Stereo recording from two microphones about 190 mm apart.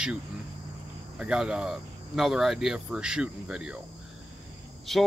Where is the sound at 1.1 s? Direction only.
5° right (ahead or behind).